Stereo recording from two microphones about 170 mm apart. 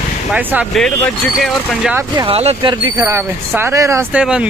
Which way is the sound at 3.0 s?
15° right (ahead or behind).